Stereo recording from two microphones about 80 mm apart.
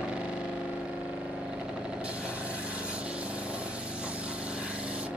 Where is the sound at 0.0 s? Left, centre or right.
Centre.